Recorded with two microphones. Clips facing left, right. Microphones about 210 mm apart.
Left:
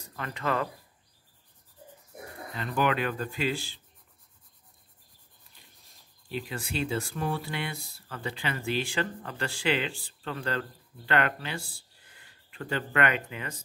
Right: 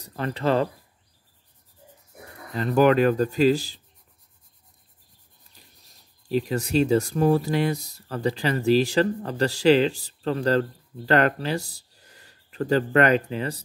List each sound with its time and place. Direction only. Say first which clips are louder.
0.0 s speech: right 8 dB; 35° right (ahead or behind)
2.5 s speech: right 10 dB; 40° right (ahead or behind)
6.2 s speech: right 11 dB; 40° right (ahead or behind)